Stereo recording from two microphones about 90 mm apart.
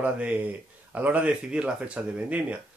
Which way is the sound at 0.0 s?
15° right (ahead or behind).